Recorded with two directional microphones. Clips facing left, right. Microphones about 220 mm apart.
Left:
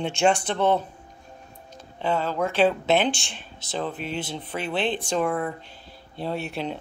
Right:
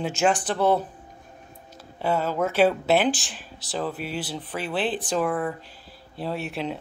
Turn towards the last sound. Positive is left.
turn(degrees=0)  # may be behind; listen again after turning